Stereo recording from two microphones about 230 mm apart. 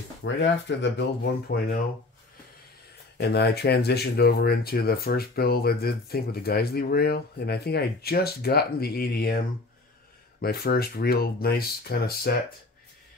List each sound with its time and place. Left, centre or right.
0.2 s speech: left
3.2 s speech: left
10.4 s speech: left